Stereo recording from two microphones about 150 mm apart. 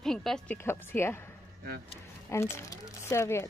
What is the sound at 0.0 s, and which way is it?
Music, 5° left (ahead or behind).